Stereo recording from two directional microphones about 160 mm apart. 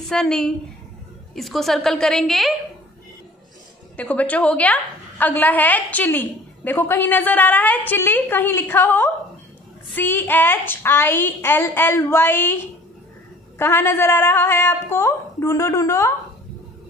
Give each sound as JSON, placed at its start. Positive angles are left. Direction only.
{"t": 0.1, "sound": "a woman's voice", "side_deg": 5}
{"t": 3.9, "sound": "a woman's voice", "side_deg": 10}
{"t": 13.6, "sound": "a woman's voice", "side_deg": 15}